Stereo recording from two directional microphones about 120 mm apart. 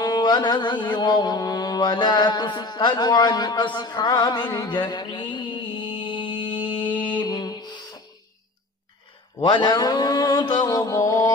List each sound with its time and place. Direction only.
0.0 s mantra: 35° left (ahead or behind)
7.1 s a sound: 40° left (ahead or behind)
9.4 s mantra: 40° left (ahead or behind)